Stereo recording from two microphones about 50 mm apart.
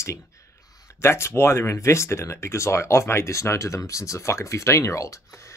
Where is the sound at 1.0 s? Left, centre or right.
Left.